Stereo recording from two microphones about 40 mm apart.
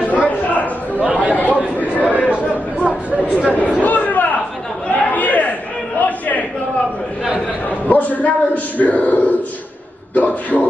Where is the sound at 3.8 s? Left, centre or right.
Left.